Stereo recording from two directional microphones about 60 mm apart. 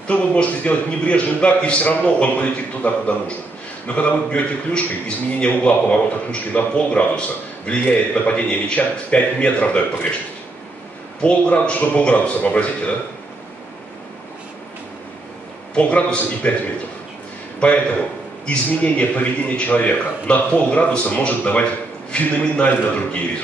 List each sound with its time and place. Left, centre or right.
0.1 s a man's voice: left
11.1 s a man's voice: left
15.7 s a man's voice: left
17.6 s a man's voice: left